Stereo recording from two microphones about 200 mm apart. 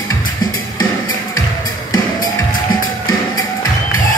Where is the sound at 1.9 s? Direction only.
20° left (ahead or behind).